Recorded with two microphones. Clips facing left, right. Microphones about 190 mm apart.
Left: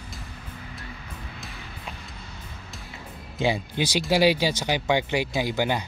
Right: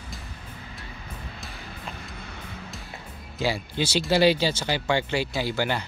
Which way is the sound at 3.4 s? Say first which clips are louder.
Left 2 dB; 20° left (ahead or behind).